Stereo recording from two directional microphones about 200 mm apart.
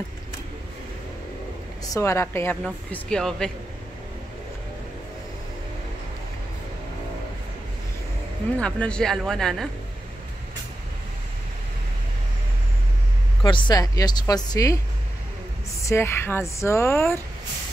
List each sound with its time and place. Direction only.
2.0 s a woman's voice: 15° left (ahead or behind)
8.5 s speech: 5° left (ahead or behind)
13.4 s speech: 25° left (ahead or behind)
15.8 s a woman's voice: 15° left (ahead or behind)